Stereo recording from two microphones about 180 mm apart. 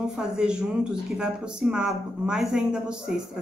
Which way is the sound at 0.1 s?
5° right (ahead or behind).